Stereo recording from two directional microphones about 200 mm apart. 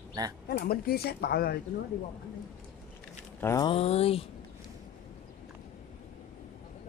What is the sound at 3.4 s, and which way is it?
Speech, 15° left (ahead or behind).